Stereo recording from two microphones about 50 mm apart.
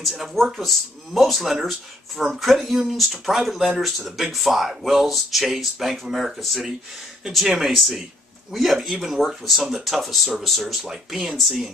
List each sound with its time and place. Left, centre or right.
0.0 s speech: centre